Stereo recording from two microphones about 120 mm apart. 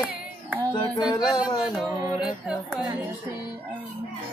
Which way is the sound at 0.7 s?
35° left (ahead or behind).